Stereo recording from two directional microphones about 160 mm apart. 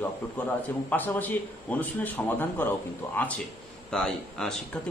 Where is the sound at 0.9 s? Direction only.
10° left (ahead or behind).